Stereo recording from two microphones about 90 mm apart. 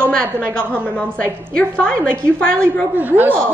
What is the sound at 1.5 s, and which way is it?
Speech, 10° left (ahead or behind).